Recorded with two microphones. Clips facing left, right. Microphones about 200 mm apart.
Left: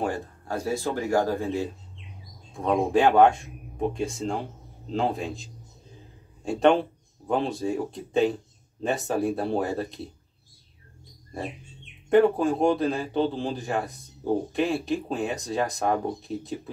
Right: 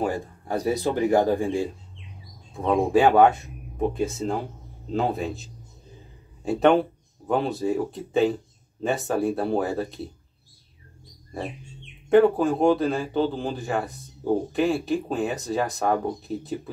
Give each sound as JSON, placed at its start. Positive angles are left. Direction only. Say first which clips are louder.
{"t": 0.5, "sound": "a man's voice", "louder": "right 4 dB", "side_deg": -15}
{"t": 12.1, "sound": "a man's voice", "louder": "right 2 dB", "side_deg": 0}